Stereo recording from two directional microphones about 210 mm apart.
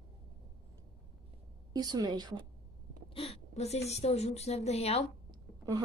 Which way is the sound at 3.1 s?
30° left (ahead or behind).